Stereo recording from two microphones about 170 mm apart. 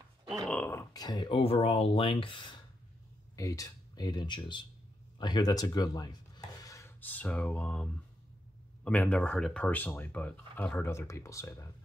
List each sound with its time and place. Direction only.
0.5 s speech: 10° left (ahead or behind); by 2.5 s 30° left (ahead or behind)
3.3 s speech: 20° left (ahead or behind)